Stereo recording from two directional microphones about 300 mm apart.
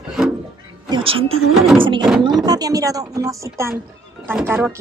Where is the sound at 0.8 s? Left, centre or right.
Centre.